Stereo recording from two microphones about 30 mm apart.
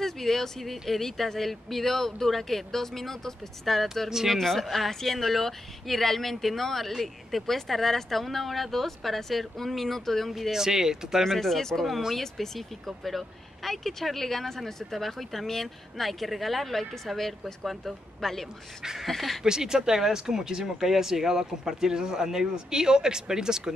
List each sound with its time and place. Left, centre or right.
0.0 s speech: centre
10.5 s speech: centre
11.2 s speech: centre
19.0 s speech: centre
19.4 s speech: right